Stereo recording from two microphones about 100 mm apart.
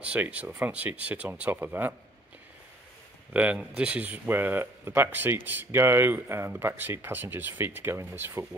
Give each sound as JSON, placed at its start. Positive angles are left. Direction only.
{"t": 0.0, "sound": "speech", "side_deg": -15}
{"t": 3.3, "sound": "speech", "side_deg": -10}